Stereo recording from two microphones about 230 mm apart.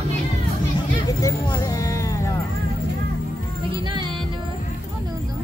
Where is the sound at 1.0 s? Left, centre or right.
Centre.